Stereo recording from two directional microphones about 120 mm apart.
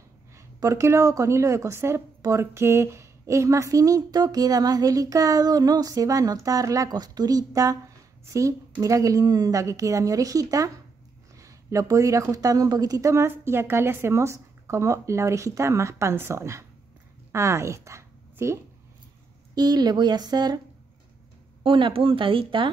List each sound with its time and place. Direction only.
0.4 s a woman's voice: 25° right (ahead or behind)
19.5 s speech: 35° right (ahead or behind)
21.6 s speech: 45° right (ahead or behind)